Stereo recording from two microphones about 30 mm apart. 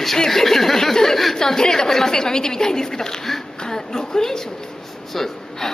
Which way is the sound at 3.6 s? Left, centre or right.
Left.